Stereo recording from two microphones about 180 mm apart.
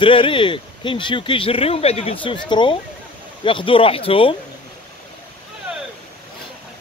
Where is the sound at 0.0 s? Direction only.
30° left (ahead or behind).